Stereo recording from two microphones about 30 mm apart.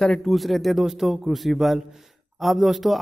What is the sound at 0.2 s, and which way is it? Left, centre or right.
A man's voice, centre.